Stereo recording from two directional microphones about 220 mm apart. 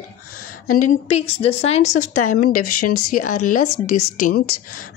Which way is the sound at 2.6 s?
90° left.